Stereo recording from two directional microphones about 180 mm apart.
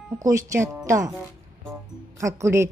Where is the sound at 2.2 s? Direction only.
15° right (ahead or behind).